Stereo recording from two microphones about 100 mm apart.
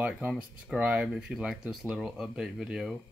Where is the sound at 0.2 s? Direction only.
20° right (ahead or behind).